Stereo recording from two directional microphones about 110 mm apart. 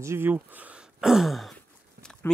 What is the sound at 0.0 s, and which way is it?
Speech, 20° right (ahead or behind).